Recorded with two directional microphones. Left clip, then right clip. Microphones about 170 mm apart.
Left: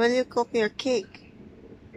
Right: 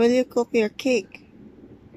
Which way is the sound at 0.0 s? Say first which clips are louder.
Right 3 dB; 20° right (ahead or behind).